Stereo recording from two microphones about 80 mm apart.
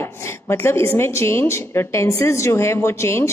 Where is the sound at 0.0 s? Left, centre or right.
Left.